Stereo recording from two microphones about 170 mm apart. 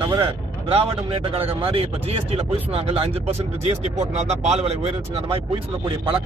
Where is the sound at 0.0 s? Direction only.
30° right (ahead or behind).